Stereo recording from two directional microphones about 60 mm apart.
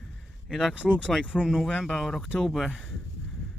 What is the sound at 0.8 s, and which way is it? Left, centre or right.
Speech, centre.